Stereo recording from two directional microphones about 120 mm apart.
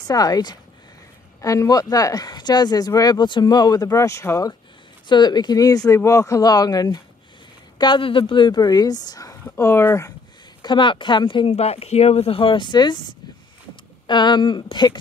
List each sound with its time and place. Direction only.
0.0 s speech: 30° left (ahead or behind)
5.0 s speech: 40° left (ahead or behind)
7.8 s speech: 45° left (ahead or behind); by 10.1 s 25° left (ahead or behind)
10.6 s speech: 40° left (ahead or behind)
11.5 s speech: 55° left (ahead or behind); by 13.0 s 35° left (ahead or behind)
14.0 s speech: 40° left (ahead or behind)